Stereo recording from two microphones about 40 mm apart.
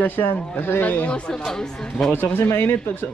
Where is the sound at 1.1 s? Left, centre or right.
Left.